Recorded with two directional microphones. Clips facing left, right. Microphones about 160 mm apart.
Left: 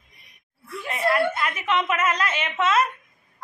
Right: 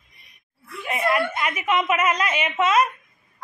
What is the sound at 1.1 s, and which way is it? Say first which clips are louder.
A woman's voice: left 1 dB; 10° right (ahead or behind).